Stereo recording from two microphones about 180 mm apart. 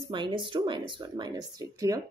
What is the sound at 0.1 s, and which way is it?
A woman's voice, 25° right (ahead or behind).